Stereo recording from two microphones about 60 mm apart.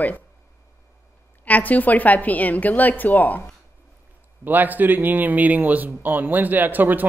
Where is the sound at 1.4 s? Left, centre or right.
Left.